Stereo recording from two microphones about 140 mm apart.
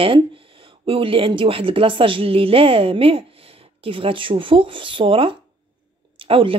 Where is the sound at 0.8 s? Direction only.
40° right (ahead or behind).